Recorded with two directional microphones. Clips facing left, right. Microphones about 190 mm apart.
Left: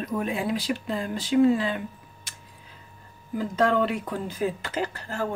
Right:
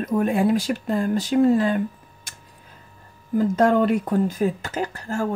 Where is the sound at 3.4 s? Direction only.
45° right (ahead or behind).